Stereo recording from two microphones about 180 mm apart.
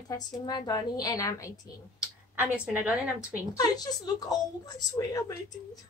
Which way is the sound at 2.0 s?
10° right (ahead or behind).